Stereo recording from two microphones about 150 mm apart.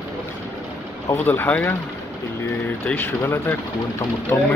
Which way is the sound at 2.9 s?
15° left (ahead or behind).